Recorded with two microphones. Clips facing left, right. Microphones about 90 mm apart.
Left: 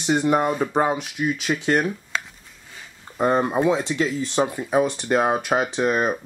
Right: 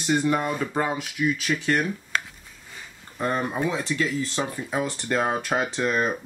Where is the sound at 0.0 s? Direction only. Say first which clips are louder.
Left 3 dB; 20° left (ahead or behind).